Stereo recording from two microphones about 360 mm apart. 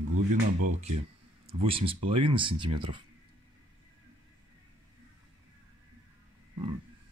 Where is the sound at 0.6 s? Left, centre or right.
Right.